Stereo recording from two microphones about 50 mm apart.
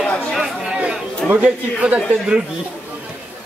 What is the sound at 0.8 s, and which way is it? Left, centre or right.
A man's voice, right.